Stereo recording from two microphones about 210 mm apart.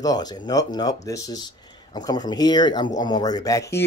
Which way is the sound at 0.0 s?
20° left (ahead or behind).